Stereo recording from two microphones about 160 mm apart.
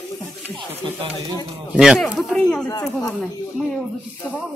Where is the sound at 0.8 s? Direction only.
30° right (ahead or behind).